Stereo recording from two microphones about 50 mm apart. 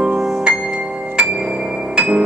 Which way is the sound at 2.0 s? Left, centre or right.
Right.